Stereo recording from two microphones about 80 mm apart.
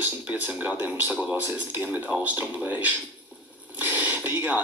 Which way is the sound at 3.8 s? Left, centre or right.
Right.